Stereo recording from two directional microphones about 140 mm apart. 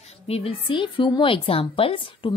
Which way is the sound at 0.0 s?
45° left (ahead or behind).